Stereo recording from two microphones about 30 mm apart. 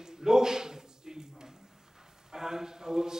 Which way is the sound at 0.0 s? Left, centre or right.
Centre.